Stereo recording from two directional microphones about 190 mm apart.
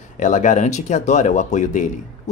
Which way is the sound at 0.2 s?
40° left (ahead or behind).